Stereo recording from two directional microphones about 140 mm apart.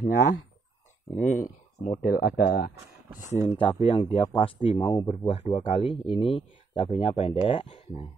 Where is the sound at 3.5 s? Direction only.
40° left (ahead or behind).